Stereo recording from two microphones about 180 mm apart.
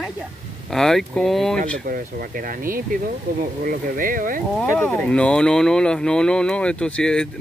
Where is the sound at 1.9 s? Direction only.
50° right (ahead or behind).